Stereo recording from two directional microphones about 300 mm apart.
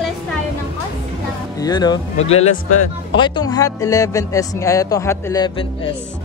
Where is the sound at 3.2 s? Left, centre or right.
Centre.